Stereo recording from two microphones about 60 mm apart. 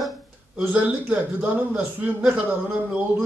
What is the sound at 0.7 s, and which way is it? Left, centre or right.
A man's voice, right.